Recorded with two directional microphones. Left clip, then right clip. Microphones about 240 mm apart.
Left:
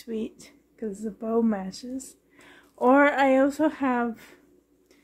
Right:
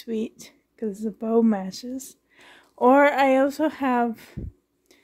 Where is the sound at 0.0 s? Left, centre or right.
Right.